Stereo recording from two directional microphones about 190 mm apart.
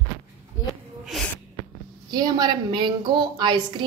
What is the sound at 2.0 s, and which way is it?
A woman's voice, 20° right (ahead or behind).